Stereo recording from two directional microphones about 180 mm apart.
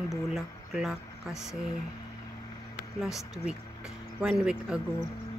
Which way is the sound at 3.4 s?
5° right (ahead or behind).